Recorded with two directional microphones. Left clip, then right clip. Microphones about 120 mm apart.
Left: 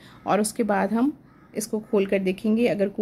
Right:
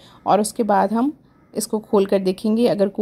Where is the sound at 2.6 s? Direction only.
40° right (ahead or behind).